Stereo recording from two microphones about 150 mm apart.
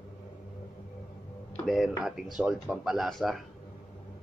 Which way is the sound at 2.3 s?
5° right (ahead or behind).